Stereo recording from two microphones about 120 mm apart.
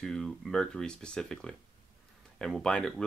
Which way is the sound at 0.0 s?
5° left (ahead or behind).